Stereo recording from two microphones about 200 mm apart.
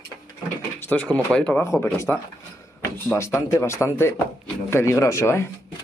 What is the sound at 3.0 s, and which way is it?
Speech, 15° left (ahead or behind).